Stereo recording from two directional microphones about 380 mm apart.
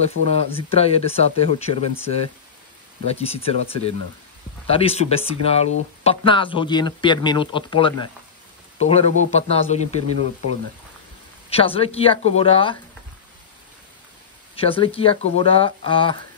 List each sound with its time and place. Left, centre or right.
0.2 s speech: right
0.5 s speech: centre
3.1 s speech: centre
10.1 s speech: right
11.5 s speech: centre
14.5 s speech: centre